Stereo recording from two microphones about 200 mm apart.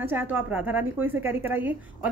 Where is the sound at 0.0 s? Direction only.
10° right (ahead or behind).